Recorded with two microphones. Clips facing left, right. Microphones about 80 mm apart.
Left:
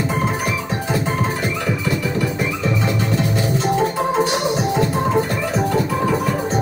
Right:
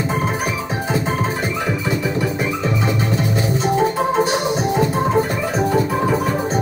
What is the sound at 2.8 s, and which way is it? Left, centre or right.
Music, centre.